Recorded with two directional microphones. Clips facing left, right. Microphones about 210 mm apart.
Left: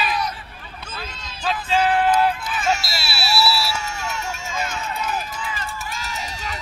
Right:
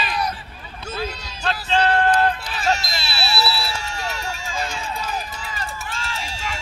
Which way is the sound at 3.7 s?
30° right (ahead or behind).